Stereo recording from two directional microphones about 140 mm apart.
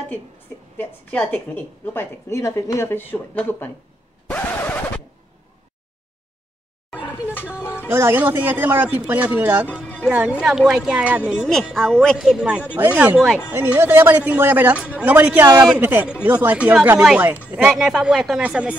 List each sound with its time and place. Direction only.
0.7 s a woman's voice: 10° left (ahead or behind)
4.3 s scratch: 10° left (ahead or behind)
7.1 s music: 15° left (ahead or behind)
7.9 s speech: 15° right (ahead or behind)